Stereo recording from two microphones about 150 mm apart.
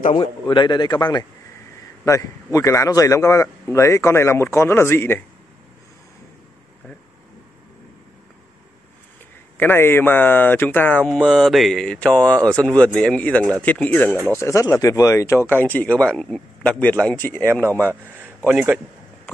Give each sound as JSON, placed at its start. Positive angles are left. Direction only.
{"t": 0.1, "sound": "speech", "side_deg": 35}
{"t": 9.6, "sound": "speech", "side_deg": 15}
{"t": 17.6, "sound": "a man's voice", "side_deg": -15}